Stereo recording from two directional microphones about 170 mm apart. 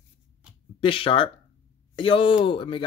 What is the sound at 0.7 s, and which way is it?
A man's voice, 30° left (ahead or behind).